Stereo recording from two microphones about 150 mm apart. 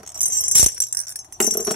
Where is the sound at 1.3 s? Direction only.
Centre (ahead or behind).